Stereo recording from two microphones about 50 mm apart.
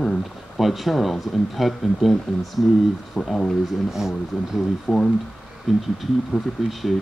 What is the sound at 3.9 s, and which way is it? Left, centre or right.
Speech, centre.